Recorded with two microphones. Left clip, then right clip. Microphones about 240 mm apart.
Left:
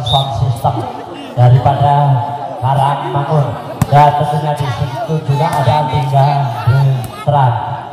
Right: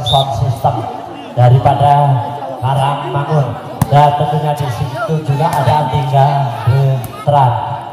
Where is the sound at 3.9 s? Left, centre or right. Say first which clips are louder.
Left 1 dB; right.